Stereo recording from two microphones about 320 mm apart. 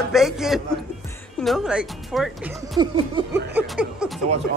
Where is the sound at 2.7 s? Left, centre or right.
Centre.